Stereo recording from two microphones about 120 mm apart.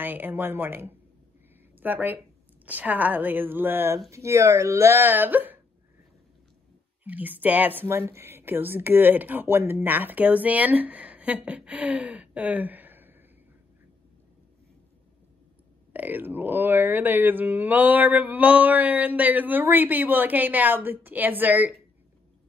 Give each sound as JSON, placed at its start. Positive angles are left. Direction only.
{"t": 0.0, "sound": "speech", "side_deg": -15}
{"t": 7.1, "sound": "speech", "side_deg": -15}
{"t": 15.9, "sound": "speech", "side_deg": -15}